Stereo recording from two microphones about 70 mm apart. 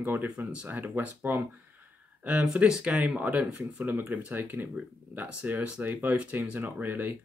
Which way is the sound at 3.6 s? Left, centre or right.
Right.